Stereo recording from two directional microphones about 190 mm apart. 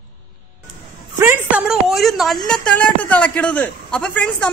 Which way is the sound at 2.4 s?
5° left (ahead or behind).